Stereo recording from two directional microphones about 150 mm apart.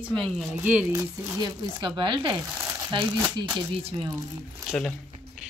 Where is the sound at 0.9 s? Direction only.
30° right (ahead or behind).